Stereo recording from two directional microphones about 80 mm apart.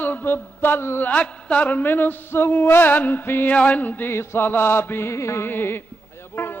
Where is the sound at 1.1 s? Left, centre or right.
Centre.